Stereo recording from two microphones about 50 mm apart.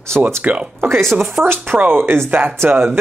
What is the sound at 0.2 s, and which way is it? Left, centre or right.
Speech, right.